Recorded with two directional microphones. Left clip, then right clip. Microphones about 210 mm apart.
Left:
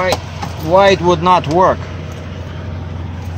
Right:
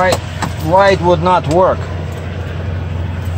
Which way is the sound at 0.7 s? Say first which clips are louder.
Even; 45° left (ahead or behind).